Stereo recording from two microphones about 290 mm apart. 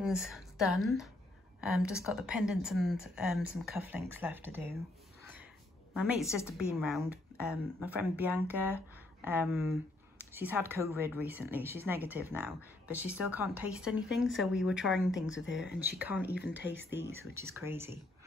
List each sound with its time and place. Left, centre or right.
0.0 s a woman's voice: centre
5.9 s speech: centre
15.3 s speech: left
16.0 s speech: centre
16.3 s speech: left
17.6 s speech: centre